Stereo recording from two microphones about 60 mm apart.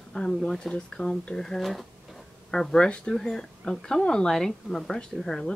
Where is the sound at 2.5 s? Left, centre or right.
Centre.